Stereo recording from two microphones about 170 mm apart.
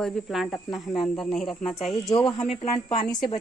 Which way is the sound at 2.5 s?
35° left (ahead or behind).